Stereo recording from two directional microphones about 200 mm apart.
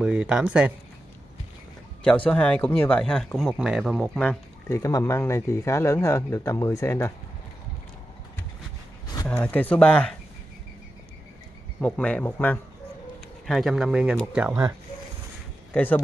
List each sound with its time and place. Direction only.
0.0 s speech: 5° right (ahead or behind)
2.0 s speech: 5° left (ahead or behind)
9.0 s a sound: 20° left (ahead or behind)
9.4 s speech: 5° left (ahead or behind)
11.8 s speech: 5° left (ahead or behind)
14.5 s speech: 15° right (ahead or behind)
15.7 s speech: 10° left (ahead or behind)